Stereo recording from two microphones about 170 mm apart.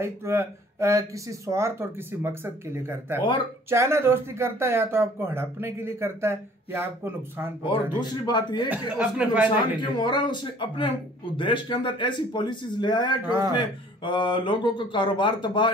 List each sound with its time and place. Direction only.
0.0 s speech: 15° right (ahead or behind)
7.6 s speech: 30° left (ahead or behind)
8.6 s speech: 10° right (ahead or behind)
9.8 s speech: 25° left (ahead or behind)